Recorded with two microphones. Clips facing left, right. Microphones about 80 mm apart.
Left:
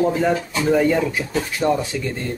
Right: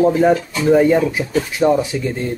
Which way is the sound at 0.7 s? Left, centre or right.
Centre.